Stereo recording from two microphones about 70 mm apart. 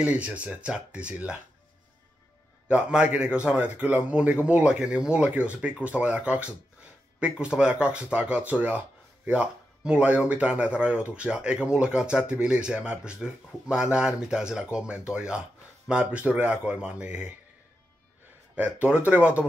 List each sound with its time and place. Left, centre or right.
0.0 s speech: centre
2.7 s speech: centre
18.6 s speech: centre